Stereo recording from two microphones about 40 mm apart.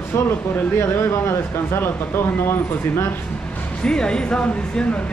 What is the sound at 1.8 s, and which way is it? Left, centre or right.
Speech, left.